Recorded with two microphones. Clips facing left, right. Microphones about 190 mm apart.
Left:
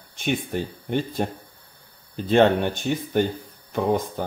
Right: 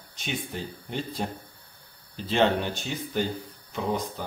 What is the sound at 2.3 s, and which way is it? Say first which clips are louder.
Speech: left 6 dB; 55° left (ahead or behind).